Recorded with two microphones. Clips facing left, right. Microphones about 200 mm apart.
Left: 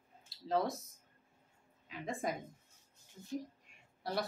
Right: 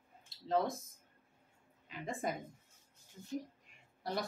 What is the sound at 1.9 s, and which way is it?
Speech, centre (ahead or behind).